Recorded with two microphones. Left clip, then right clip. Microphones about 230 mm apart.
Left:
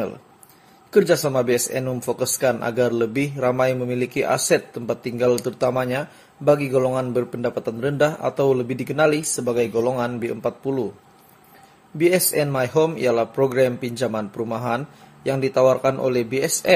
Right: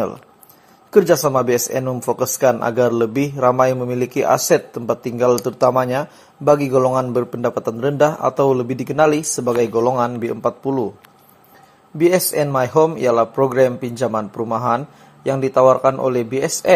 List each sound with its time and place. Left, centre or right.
0.9 s speech: centre
12.0 s speech: centre